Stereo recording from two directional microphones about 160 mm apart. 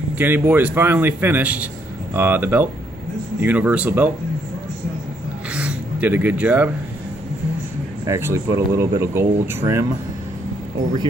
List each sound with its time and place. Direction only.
0.2 s speech: 10° right (ahead or behind)
5.5 s a sound: 5° right (ahead or behind)
8.0 s speech: 15° right (ahead or behind)